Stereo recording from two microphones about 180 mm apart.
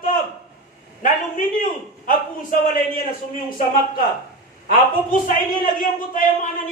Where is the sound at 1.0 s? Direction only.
50° left (ahead or behind).